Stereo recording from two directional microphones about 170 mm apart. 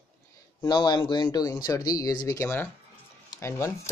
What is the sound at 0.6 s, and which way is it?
Speech, 25° left (ahead or behind).